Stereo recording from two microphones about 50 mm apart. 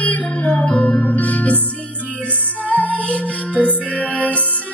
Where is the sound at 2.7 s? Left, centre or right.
Left.